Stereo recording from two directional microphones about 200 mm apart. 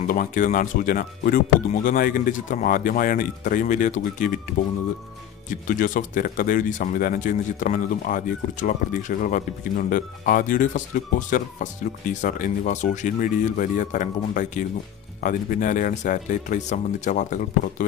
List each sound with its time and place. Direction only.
0.0 s speech: 40° left (ahead or behind)
5.5 s speech: 40° left (ahead or behind)